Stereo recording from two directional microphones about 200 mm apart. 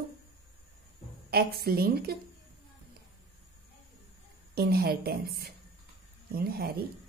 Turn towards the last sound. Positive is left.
turn(degrees=-50)  # may be behind; listen again after turning